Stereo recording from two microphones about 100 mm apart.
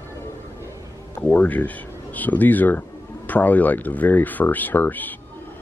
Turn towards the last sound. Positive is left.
turn(degrees=15)  # may be behind; listen again after turning